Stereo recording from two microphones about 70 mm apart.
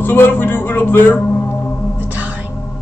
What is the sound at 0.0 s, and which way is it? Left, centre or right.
Speech, left.